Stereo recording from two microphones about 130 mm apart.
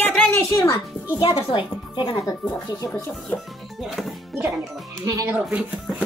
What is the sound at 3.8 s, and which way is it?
Speech, centre (ahead or behind).